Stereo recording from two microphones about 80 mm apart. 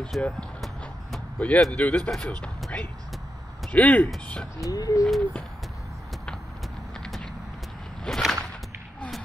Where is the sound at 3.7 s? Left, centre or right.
Centre.